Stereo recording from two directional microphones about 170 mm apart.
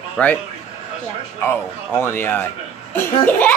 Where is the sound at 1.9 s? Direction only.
15° left (ahead or behind).